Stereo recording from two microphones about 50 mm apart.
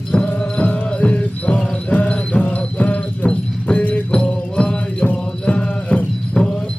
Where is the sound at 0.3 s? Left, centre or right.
Left.